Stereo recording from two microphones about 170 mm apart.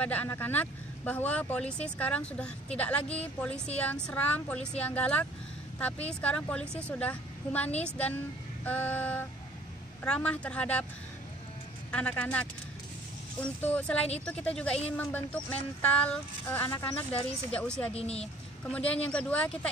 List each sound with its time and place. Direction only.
0.0 s speech: 10° left (ahead or behind)
11.9 s speech: 5° left (ahead or behind)
17.9 s speech: 35° left (ahead or behind)
18.7 s speech: 5° left (ahead or behind)